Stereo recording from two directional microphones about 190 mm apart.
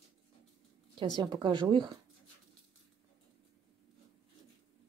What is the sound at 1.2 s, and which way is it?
Speech, 25° right (ahead or behind).